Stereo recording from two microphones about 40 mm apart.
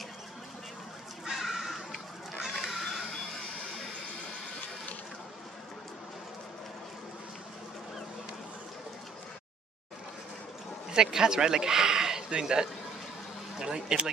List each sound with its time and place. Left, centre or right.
1.3 s a sound: centre
10.9 s speech: centre
13.7 s speech: right